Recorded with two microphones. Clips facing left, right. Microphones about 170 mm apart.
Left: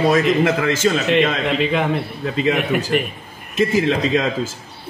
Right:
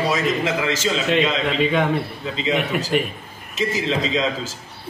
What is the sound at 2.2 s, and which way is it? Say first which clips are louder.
A man's voice: left 6 dB; 55° left (ahead or behind).